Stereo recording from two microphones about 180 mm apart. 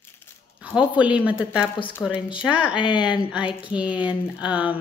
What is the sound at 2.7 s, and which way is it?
Speech, 25° left (ahead or behind).